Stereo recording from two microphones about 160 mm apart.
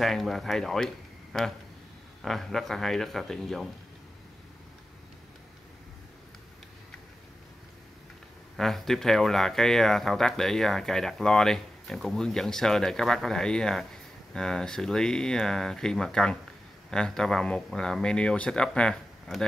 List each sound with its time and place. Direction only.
0.0 s speech: centre (ahead or behind)
8.5 s speech: centre (ahead or behind)